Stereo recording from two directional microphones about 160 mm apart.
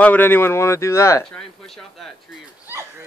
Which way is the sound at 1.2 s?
5° left (ahead or behind).